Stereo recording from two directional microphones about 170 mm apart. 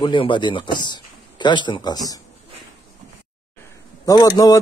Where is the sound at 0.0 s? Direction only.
30° left (ahead or behind).